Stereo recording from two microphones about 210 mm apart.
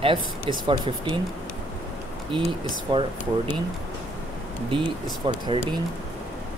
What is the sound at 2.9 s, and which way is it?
Speech, 20° right (ahead or behind).